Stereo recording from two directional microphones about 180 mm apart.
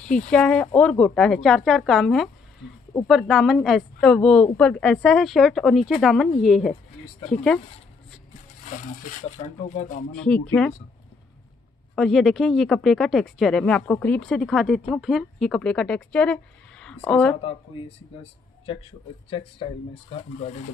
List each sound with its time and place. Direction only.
0.3 s speech: 5° left (ahead or behind)
9.4 s speech: 45° left (ahead or behind)
10.1 s speech: 5° left (ahead or behind)
11.9 s speech: centre (ahead or behind)
17.4 s speech: 30° left (ahead or behind)